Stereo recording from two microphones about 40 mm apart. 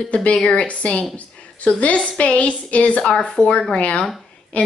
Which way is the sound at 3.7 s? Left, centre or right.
Left.